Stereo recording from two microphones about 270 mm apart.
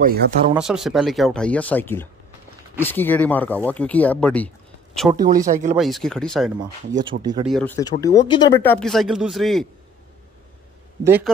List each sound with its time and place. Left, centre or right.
0.0 s speech: right
0.6 s speech: centre
5.2 s speech: right
5.8 s speech: centre
6.6 s speech: right
7.1 s speech: centre
7.4 s speech: centre
8.7 s speech: centre
11.1 s speech: centre